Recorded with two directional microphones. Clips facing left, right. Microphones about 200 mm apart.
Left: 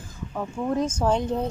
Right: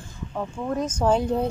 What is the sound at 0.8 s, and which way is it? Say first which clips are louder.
Speech: right 1 dB; 10° left (ahead or behind).